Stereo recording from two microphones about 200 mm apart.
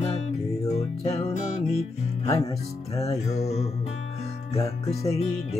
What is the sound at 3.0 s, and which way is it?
Guitar, 30° left (ahead or behind).